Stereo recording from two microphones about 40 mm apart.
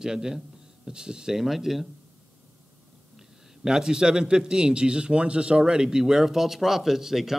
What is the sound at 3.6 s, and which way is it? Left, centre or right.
A man's voice, centre.